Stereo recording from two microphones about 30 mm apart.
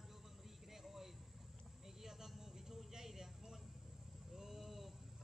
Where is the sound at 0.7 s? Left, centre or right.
Centre.